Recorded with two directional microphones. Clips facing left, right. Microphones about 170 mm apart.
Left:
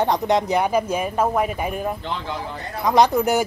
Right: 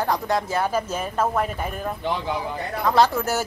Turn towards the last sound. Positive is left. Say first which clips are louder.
# left 3 dB
turn(degrees=15)  # may be behind; listen again after turning